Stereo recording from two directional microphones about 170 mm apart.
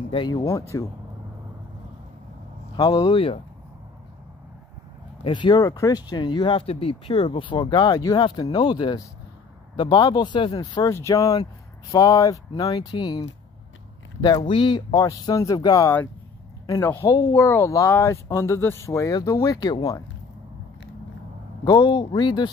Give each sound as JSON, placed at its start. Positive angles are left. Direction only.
{"t": 0.1, "sound": "speech", "side_deg": 30}
{"t": 0.5, "sound": "speech", "side_deg": 20}
{"t": 2.7, "sound": "speech", "side_deg": 25}
{"t": 5.2, "sound": "speech", "side_deg": 25}
{"t": 14.2, "sound": "speech", "side_deg": 25}
{"t": 21.6, "sound": "speech", "side_deg": 25}